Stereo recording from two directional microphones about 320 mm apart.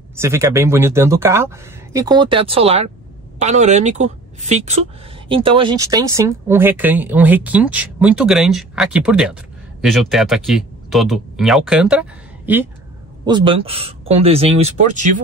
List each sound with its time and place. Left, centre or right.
0.1 s a man's voice: centre